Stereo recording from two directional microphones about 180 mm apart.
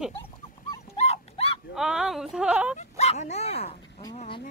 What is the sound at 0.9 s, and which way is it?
Dog, 35° left (ahead or behind).